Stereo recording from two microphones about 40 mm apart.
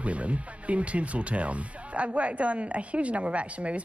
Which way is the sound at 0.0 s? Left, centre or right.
Right.